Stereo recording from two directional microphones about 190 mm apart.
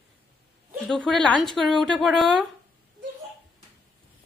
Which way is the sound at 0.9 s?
5° left (ahead or behind).